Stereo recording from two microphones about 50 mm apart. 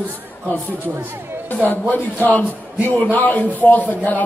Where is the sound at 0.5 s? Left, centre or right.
Left.